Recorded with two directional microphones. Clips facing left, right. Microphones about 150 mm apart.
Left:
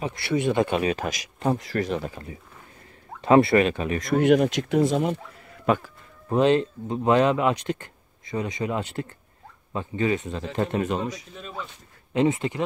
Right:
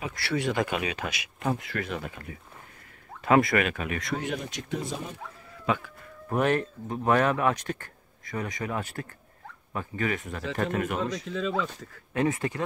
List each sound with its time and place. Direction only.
0.0 s speech: 20° left (ahead or behind)
4.2 s speech: 75° left (ahead or behind); by 5.1 s 90° left
6.2 s speech: 20° left (ahead or behind)
11.2 s speech: 90° right
12.1 s speech: 20° left (ahead or behind)